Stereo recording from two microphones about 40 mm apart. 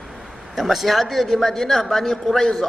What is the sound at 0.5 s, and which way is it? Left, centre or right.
A man's voice, centre.